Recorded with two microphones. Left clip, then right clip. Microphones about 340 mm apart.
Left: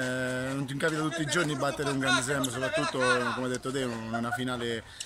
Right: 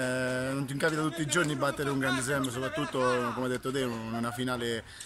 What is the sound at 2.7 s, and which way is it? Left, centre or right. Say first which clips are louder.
Speech: left 2 dB; left.